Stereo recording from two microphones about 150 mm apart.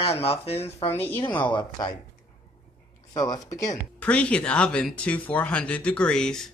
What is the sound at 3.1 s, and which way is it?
Speech, 25° left (ahead or behind).